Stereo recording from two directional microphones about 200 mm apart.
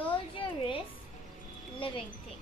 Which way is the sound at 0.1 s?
25° left (ahead or behind).